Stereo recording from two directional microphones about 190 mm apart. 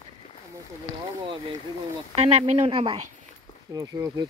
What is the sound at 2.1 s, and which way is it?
Speech, 35° right (ahead or behind).